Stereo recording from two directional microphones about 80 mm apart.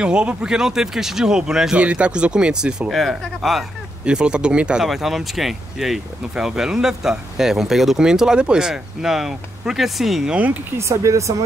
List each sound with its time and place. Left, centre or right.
0.0 s speech: centre
2.9 s speech: centre
4.0 s speech: centre
10.3 s speech: centre
10.8 s speech: right